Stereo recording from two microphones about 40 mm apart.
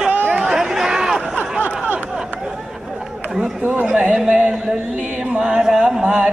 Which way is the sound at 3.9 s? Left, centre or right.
Centre.